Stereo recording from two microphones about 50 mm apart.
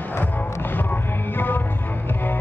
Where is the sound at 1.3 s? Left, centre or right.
Left.